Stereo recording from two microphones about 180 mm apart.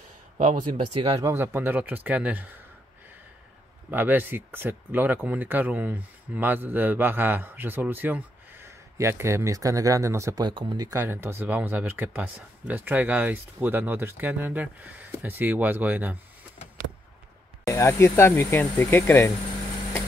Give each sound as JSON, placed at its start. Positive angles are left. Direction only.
{"t": 0.4, "sound": "speech", "side_deg": -45}
{"t": 1.0, "sound": "speech", "side_deg": -15}
{"t": 3.9, "sound": "speech", "side_deg": -10}
{"t": 17.6, "sound": "speech", "side_deg": 15}